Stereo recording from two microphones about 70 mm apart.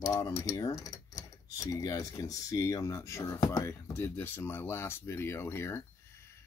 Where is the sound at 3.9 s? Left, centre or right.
Left.